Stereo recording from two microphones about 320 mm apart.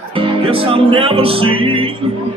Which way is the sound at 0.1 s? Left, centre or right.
Centre.